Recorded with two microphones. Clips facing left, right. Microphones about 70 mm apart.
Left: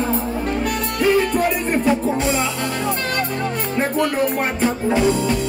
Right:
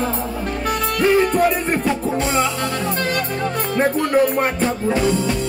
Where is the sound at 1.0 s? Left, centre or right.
Right.